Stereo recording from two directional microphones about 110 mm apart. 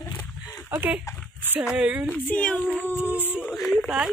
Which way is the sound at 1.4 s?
20° right (ahead or behind).